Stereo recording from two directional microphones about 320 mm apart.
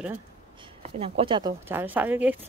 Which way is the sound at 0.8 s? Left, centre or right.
Centre.